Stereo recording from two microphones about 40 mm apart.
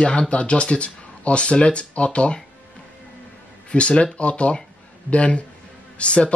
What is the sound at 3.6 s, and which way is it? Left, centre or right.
Speech, left.